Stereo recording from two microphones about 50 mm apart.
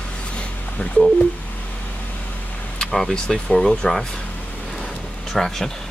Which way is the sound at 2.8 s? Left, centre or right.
Centre.